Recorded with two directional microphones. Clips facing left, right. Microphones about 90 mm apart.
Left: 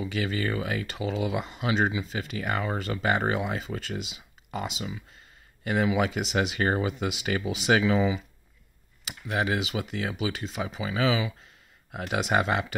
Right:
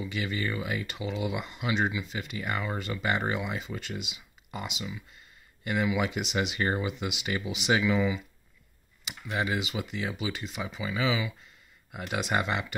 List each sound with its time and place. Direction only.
0.0 s speech: 30° left (ahead or behind)
9.3 s speech: 25° left (ahead or behind)